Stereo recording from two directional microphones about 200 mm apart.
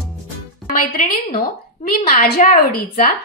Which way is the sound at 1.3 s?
45° left (ahead or behind).